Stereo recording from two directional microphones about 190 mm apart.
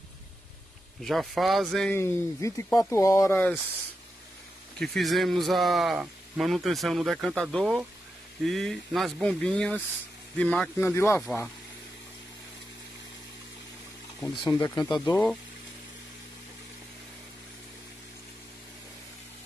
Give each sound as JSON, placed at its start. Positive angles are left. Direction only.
{"t": 1.0, "sound": "a man's voice", "side_deg": 0}
{"t": 4.7, "sound": "a man's voice", "side_deg": 0}
{"t": 14.2, "sound": "speech", "side_deg": 20}
{"t": 14.9, "sound": "a man's voice", "side_deg": 5}